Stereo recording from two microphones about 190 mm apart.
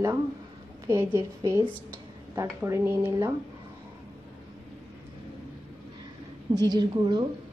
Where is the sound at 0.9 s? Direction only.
15° right (ahead or behind).